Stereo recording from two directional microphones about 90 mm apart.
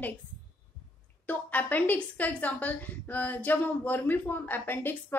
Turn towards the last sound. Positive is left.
turn(degrees=20)  # may be behind; listen again after turning